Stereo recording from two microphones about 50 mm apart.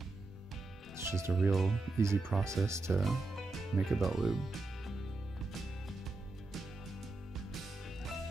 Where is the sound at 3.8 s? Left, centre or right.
Centre.